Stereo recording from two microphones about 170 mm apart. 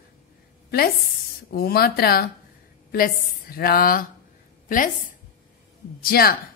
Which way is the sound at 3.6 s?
60° left (ahead or behind).